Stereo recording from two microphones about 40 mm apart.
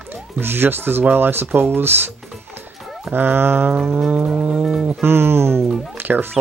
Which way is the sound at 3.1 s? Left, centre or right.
Right.